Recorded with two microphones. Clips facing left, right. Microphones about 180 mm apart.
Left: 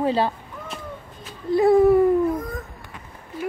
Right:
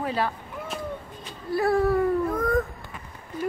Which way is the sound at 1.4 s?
20° left (ahead or behind).